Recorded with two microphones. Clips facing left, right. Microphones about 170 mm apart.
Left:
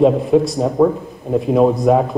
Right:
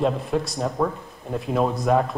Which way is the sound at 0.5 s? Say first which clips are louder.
Left 10 dB; 20° left (ahead or behind).